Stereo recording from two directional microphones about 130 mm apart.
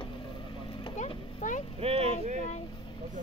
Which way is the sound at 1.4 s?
80° left.